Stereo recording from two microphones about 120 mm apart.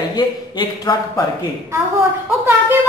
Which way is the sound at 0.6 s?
40° left (ahead or behind).